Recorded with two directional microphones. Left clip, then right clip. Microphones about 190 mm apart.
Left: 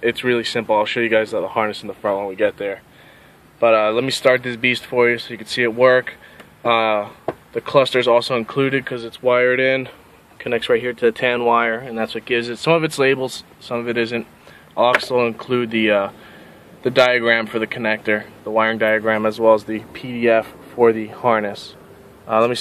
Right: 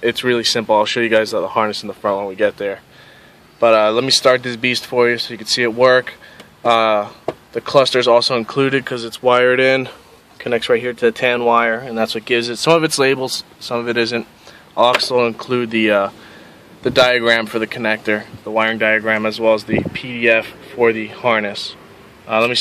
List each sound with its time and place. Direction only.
0.0 s speech: 15° right (ahead or behind)
11.9 s speech: 20° right (ahead or behind); by 22.6 s centre (ahead or behind)